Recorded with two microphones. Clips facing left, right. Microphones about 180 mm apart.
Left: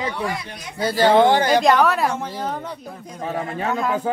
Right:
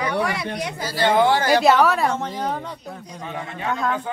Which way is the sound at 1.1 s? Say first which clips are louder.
Left 2 dB; 20° left (ahead or behind).